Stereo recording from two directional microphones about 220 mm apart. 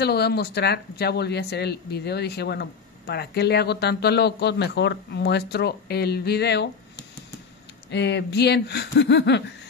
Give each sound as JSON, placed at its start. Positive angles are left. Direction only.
{"t": 0.0, "sound": "speech", "side_deg": 50}